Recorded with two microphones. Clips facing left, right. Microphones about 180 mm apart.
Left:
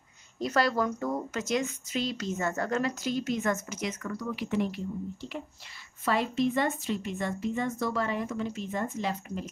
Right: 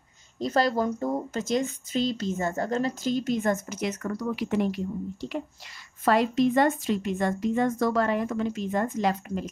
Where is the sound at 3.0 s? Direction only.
5° left (ahead or behind).